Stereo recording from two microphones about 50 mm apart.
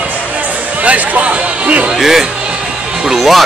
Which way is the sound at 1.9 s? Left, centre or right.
Centre.